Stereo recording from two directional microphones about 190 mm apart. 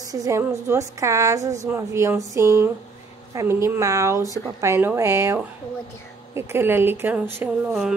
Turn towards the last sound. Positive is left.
turn(degrees=-5)  # may be behind; listen again after turning